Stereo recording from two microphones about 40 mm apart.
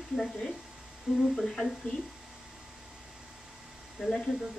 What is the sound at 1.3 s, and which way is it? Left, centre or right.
Speech, centre.